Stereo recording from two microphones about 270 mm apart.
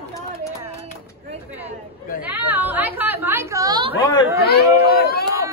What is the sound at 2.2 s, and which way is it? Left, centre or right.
Chatter, centre.